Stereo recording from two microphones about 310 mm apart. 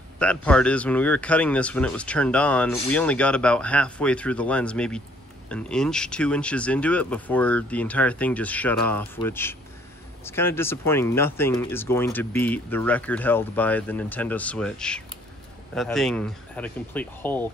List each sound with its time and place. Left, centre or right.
0.2 s speech: centre